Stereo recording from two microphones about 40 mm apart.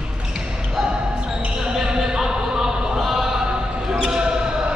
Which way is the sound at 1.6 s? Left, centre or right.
Centre.